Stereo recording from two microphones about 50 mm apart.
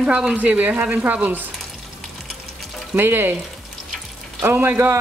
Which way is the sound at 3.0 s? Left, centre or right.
Right.